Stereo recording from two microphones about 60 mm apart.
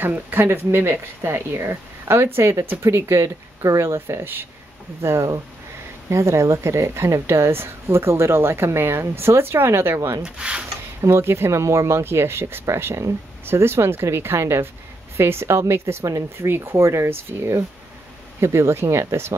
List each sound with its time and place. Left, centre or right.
0.1 s a woman's voice: right
5.0 s a woman's voice: right
10.2 s speech: centre
11.0 s a woman's voice: right
12.6 s a woman's voice: right
16.0 s speech: right
16.3 s a woman's voice: right